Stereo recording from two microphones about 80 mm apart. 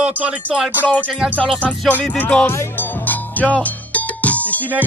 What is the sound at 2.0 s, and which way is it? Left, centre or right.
Music, centre.